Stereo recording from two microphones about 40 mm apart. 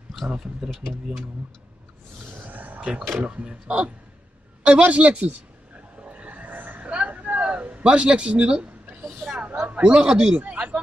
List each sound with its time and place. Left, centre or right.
0.6 s speech: centre
2.2 s a sound: right
3.3 s speech: right
6.0 s a sound: right
6.9 s vehicle: right
7.4 s a man's voice: right
10.4 s speech: right